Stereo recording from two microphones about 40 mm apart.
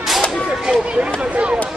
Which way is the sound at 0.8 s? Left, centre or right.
Right.